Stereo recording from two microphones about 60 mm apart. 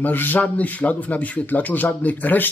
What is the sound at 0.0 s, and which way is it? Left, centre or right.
Speech, left.